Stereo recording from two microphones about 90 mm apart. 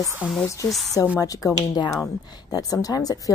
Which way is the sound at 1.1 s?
40° left (ahead or behind).